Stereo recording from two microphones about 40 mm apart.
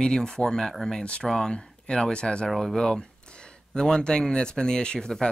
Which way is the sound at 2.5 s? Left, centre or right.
Centre.